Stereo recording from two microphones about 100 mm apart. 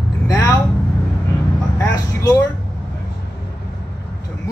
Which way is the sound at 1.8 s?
35° left (ahead or behind).